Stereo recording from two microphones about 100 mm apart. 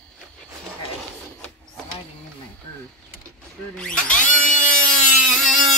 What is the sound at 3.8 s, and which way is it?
Tools, 10° left (ahead or behind).